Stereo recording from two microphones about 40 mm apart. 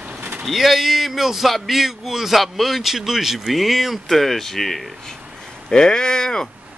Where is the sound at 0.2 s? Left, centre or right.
Right.